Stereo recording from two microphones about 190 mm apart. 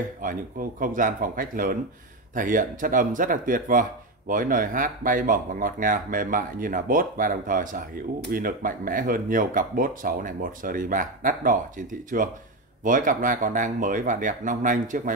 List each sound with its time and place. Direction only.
0.2 s speech: 45° right (ahead or behind)